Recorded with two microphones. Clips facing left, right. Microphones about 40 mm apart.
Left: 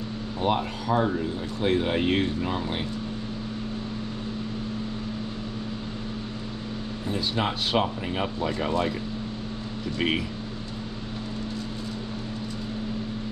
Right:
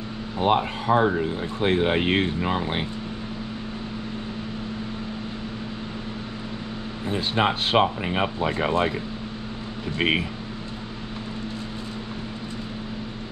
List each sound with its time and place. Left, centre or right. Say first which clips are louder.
0.4 s speech: right 4 dB; right
7.1 s speech: right 5 dB; right
9.9 s speech: right 3 dB; right